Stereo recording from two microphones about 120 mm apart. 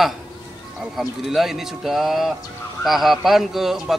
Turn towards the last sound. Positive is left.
turn(degrees=0)  # may be behind; listen again after turning